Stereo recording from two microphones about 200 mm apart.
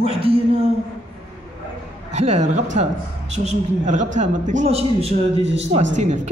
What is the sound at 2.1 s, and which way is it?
A man's voice, 35° right (ahead or behind).